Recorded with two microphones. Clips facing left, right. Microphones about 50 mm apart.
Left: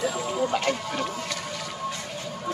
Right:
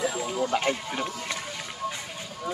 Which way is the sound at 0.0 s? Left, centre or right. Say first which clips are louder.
Left 1 dB; centre.